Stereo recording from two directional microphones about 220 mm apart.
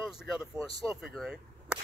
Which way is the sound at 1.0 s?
5° right (ahead or behind).